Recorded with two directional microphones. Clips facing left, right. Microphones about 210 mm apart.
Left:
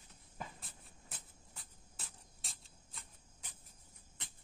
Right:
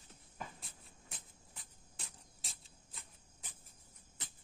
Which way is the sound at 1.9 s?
Centre (ahead or behind).